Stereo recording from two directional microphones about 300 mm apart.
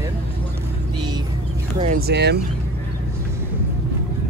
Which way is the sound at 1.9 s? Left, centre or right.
Right.